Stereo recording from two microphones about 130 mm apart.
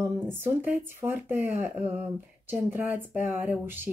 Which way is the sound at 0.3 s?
15° right (ahead or behind).